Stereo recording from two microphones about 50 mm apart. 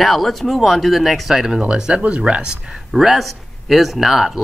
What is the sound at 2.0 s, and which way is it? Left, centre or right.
Speech, right.